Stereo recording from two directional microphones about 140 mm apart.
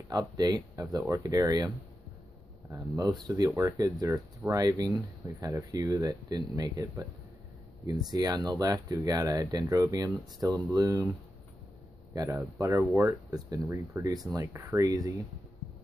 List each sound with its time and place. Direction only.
0.1 s speech: 30° right (ahead or behind)
2.7 s speech: 25° right (ahead or behind)
12.1 s speech: 20° right (ahead or behind)